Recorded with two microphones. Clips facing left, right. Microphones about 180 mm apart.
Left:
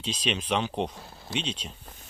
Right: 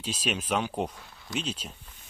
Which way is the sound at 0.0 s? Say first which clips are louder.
Left 1 dB; 5° right (ahead or behind).